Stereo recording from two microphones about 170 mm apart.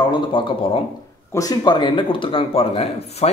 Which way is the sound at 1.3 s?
20° left (ahead or behind).